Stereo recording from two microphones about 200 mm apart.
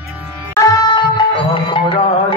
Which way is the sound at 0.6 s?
20° left (ahead or behind).